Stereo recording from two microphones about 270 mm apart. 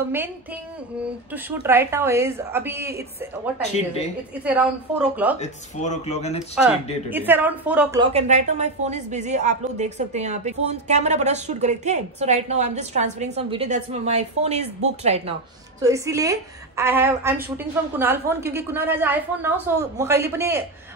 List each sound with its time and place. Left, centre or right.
1.3 s a woman's voice: centre
3.7 s speech: left
4.5 s a woman's voice: centre
5.4 s speech: left
7.1 s a woman's voice: centre
8.0 s a woman's voice: right
15.8 s a woman's voice: centre